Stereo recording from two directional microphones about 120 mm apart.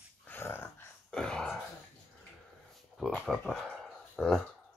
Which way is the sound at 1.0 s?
5° left (ahead or behind).